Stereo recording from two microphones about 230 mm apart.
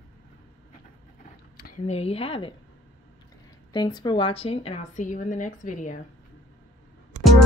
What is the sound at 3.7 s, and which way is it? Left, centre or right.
A woman's voice, centre.